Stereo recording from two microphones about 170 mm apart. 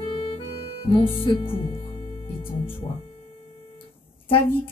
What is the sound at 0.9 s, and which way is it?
Speech, 30° left (ahead or behind).